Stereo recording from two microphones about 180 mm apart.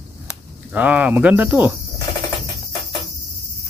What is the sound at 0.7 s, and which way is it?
Speech, 10° right (ahead or behind).